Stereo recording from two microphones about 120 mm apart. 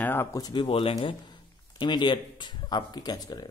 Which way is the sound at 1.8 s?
40° left (ahead or behind).